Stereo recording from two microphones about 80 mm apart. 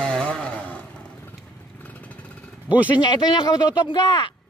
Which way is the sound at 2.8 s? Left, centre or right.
Left.